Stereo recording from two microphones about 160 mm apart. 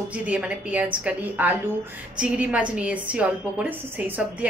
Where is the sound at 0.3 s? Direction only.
10° right (ahead or behind).